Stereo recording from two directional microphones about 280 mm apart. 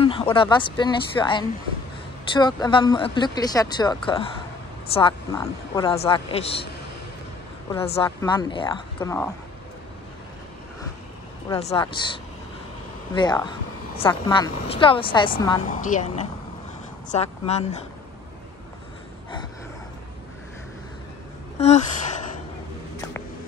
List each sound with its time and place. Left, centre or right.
0.0 s speech: centre
7.8 s speech: left
11.4 s speech: centre
13.1 s speech: centre
15.7 s speech: left
17.1 s speech: left
21.5 s speech: left